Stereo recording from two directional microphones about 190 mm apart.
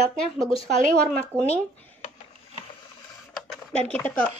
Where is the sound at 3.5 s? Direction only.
5° left (ahead or behind).